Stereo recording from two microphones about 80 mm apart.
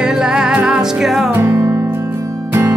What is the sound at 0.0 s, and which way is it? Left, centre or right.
Music, centre.